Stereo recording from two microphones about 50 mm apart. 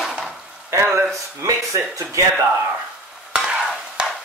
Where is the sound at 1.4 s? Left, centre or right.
Right.